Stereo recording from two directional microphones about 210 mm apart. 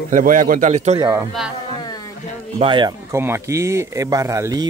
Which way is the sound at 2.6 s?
20° right (ahead or behind).